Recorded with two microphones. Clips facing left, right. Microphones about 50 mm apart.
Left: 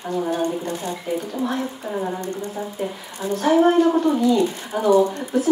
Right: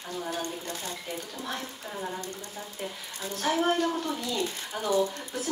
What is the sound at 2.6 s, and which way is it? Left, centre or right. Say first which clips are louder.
Speech: left 9 dB; centre.